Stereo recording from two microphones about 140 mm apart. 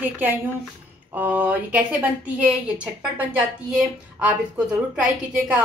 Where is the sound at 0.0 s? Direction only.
15° right (ahead or behind).